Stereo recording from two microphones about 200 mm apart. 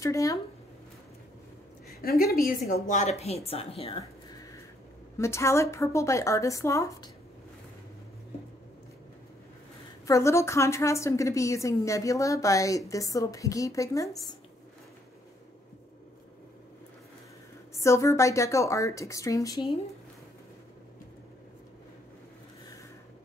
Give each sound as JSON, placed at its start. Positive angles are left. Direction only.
{"t": 0.0, "sound": "a woman's voice", "side_deg": 15}
{"t": 1.9, "sound": "a woman's voice", "side_deg": 50}
{"t": 4.0, "sound": "a sound", "side_deg": 15}
{"t": 5.1, "sound": "a woman's voice", "side_deg": 15}
{"t": 10.0, "sound": "a woman's voice", "side_deg": 15}
{"t": 17.7, "sound": "a woman's voice", "side_deg": 15}